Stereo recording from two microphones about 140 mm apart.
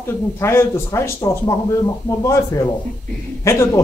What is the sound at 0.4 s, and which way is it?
Speech, 15° left (ahead or behind).